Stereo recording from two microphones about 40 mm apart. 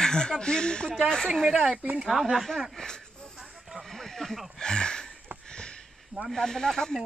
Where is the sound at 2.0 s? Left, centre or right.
Centre.